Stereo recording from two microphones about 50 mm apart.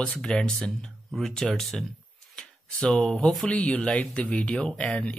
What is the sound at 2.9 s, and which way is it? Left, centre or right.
Speech, left.